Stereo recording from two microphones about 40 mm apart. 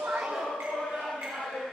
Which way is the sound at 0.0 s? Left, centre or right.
Right.